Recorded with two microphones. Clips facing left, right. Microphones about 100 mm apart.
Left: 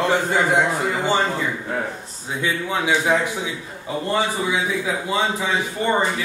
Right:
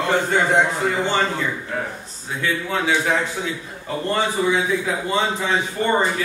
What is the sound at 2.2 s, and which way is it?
A man's voice, 15° left (ahead or behind).